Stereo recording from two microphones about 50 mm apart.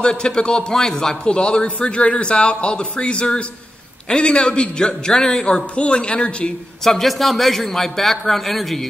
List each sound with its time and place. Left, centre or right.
0.0 s a man's voice: centre
6.8 s a man's voice: centre